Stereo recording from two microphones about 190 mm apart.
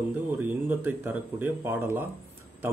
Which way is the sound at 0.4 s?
10° right (ahead or behind).